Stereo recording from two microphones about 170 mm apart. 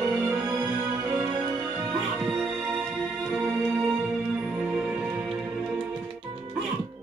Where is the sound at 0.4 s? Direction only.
20° right (ahead or behind).